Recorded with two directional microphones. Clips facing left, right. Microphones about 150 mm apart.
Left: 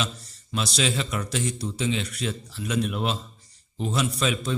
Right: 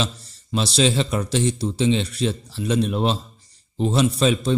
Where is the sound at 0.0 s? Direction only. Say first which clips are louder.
Right 4 dB; 30° right (ahead or behind).